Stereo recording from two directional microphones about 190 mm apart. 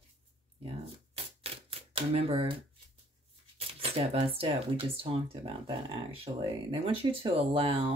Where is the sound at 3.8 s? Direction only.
30° right (ahead or behind).